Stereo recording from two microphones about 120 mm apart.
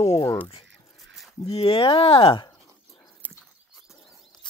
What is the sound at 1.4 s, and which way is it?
Speech, 50° left (ahead or behind).